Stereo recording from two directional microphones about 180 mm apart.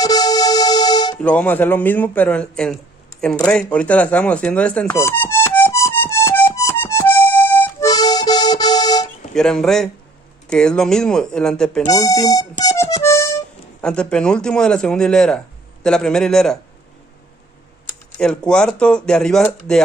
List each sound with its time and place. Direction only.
0.0 s music: 20° left (ahead or behind)
1.2 s a sound: 10° left (ahead or behind)
9.3 s a man's voice: 5° left (ahead or behind)
12.3 s music: 20° left (ahead or behind)
13.8 s a man's voice: 5° left (ahead or behind)
18.1 s a man's voice: 5° left (ahead or behind)